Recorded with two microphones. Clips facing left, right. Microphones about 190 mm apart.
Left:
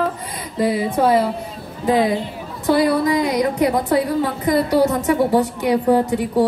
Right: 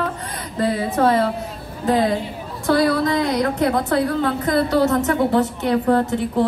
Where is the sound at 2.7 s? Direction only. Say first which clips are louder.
Left 1 dB; 15° left (ahead or behind).